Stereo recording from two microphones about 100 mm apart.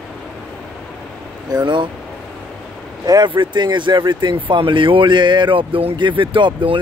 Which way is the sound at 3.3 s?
55° right (ahead or behind).